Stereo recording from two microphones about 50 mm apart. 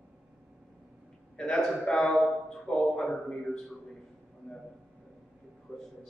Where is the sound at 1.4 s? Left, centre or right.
Centre.